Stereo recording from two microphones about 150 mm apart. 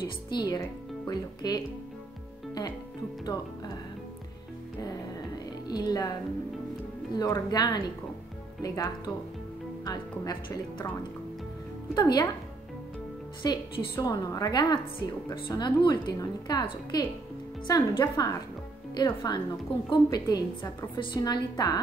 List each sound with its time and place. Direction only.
0.0 s a woman's voice: 30° left (ahead or behind)
5.7 s a woman's voice: 25° left (ahead or behind)
7.2 s a woman's voice: 25° left (ahead or behind)
11.9 s a woman's voice: 25° left (ahead or behind)
13.4 s a woman's voice: 30° left (ahead or behind)